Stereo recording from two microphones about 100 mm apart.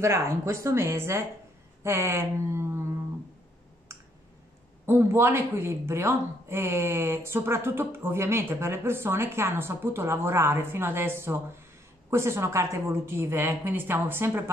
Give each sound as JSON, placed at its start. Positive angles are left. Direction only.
{"t": 0.0, "sound": "a woman's voice", "side_deg": -25}
{"t": 4.8, "sound": "a woman's voice", "side_deg": -25}